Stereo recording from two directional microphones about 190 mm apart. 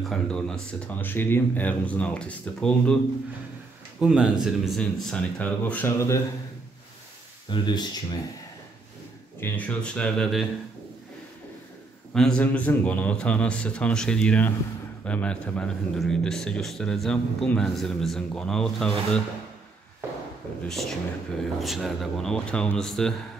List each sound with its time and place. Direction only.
0.1 s speech: 5° left (ahead or behind)
4.0 s a man's voice: 5° right (ahead or behind); by 6.2 s 15° left (ahead or behind)
7.4 s speech: 25° left (ahead or behind)
9.4 s a man's voice: 5° left (ahead or behind)
12.1 s a man's voice: 5° left (ahead or behind)
20.6 s a man's voice: centre (ahead or behind)